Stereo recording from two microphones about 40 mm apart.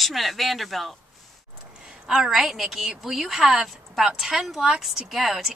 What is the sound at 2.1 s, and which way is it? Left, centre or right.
A woman's voice, centre.